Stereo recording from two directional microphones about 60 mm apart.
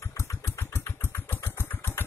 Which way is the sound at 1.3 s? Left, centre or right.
Left.